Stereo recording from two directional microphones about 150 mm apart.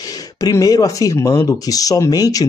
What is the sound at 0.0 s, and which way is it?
Speech, 25° left (ahead or behind).